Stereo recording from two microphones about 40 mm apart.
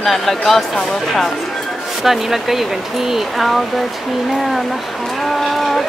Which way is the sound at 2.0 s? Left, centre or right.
Centre.